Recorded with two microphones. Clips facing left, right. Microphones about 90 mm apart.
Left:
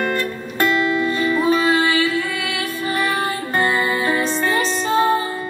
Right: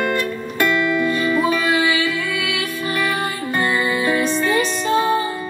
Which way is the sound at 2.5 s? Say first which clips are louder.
Even; 20° left (ahead or behind).